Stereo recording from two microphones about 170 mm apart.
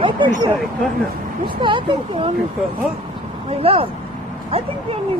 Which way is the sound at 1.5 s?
30° right (ahead or behind).